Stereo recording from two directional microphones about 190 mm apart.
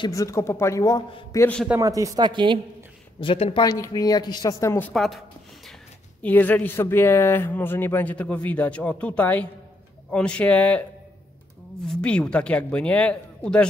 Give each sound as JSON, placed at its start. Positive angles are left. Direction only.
{"t": 0.0, "sound": "speech", "side_deg": 15}
{"t": 1.7, "sound": "speech", "side_deg": -15}
{"t": 3.2, "sound": "speech", "side_deg": 30}
{"t": 3.6, "sound": "speech", "side_deg": 20}
{"t": 4.9, "sound": "speech", "side_deg": 0}
{"t": 6.2, "sound": "speech", "side_deg": 10}
{"t": 11.9, "sound": "speech", "side_deg": 5}